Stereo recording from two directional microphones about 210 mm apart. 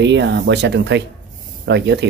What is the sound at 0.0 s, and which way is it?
Speech, 55° right (ahead or behind).